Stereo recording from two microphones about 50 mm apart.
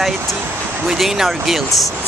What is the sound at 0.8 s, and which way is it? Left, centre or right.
Speech, centre.